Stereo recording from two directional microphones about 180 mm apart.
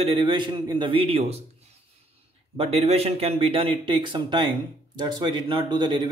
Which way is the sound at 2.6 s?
35° right (ahead or behind).